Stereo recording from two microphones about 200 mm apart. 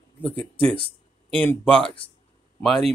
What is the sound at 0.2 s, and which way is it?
Speech, 10° left (ahead or behind).